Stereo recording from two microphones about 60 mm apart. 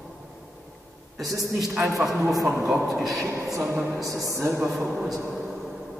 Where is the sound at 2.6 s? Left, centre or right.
Right.